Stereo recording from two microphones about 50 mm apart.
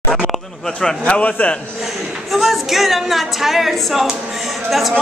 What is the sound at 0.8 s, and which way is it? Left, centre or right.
Speech, centre.